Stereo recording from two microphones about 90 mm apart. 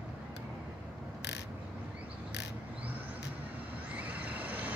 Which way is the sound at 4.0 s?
15° right (ahead or behind).